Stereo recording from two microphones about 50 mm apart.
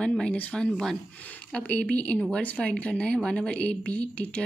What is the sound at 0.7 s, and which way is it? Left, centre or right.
Speech, centre.